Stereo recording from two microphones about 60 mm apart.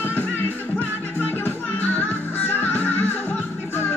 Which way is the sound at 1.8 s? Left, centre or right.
Left.